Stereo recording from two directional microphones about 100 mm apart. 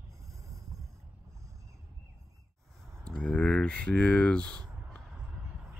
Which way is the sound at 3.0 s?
10° left (ahead or behind).